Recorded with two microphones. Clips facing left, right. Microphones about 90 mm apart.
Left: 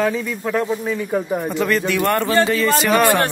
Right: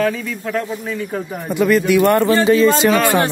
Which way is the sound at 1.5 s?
10° right (ahead or behind).